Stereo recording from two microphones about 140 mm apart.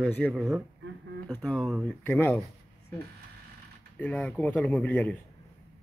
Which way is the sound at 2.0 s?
15° left (ahead or behind).